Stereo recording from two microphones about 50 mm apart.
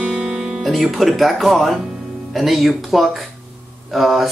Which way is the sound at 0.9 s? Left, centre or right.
Centre.